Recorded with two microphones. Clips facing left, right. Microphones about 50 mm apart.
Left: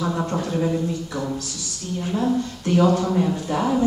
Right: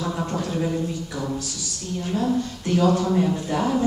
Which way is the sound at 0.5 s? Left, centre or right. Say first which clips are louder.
Left 2 dB; centre.